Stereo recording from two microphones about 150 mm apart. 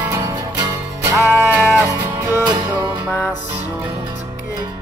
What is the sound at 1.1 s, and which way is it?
Music, 10° right (ahead or behind).